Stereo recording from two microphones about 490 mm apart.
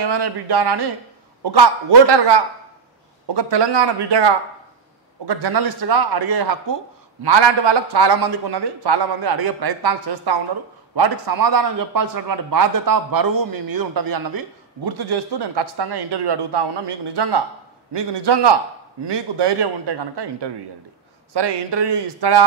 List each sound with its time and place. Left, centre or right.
0.0 s a man's voice: right